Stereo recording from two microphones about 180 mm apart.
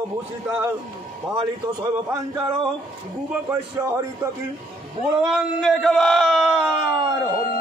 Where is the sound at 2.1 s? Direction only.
20° right (ahead or behind).